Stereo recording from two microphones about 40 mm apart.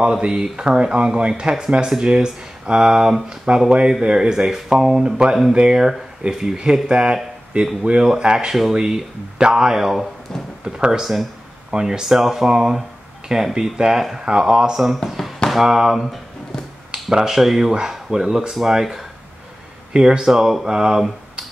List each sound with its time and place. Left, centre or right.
0.3 s speech: centre
15.0 s basketball bounce: centre
15.5 s speech: centre
16.9 s a sound: centre
17.4 s speech: centre